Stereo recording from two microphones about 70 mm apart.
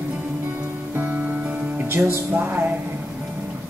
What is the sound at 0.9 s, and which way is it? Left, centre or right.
Music, right.